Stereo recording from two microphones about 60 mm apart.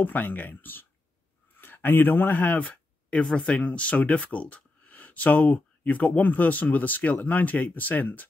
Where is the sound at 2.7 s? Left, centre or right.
Centre.